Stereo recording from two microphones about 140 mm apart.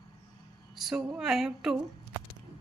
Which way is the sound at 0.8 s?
5° right (ahead or behind).